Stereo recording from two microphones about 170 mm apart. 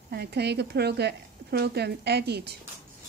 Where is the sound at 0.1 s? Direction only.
75° right (ahead or behind).